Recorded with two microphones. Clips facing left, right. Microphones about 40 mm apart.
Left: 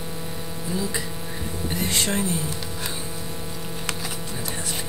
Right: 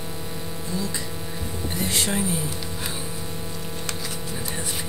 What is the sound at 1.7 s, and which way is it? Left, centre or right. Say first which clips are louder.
Speech: left 1 dB; centre.